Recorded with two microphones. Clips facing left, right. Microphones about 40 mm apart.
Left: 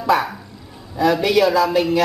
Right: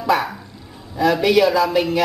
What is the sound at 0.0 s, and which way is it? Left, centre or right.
Speech, centre.